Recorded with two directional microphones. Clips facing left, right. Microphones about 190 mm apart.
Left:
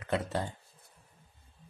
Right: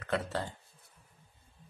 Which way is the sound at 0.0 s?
15° left (ahead or behind).